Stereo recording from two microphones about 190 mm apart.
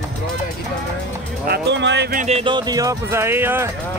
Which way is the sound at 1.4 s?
60° right (ahead or behind).